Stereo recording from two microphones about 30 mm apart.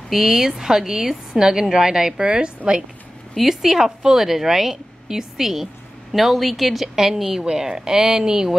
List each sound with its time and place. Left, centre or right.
0.1 s a woman's voice: centre
2.2 s a woman's voice: right
3.4 s a woman's voice: centre
7.4 s speech: right